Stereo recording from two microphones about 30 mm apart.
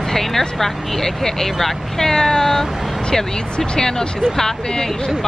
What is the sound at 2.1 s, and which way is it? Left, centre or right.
Speech, centre.